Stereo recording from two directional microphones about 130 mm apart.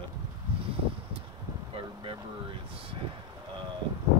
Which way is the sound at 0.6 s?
45° right (ahead or behind).